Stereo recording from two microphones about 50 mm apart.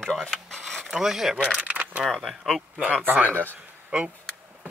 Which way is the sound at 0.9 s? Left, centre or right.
Centre.